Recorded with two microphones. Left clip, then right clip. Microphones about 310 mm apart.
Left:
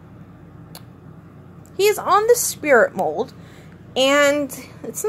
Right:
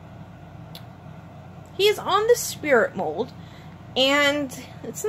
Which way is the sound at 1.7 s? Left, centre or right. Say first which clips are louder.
Left 4 dB; centre.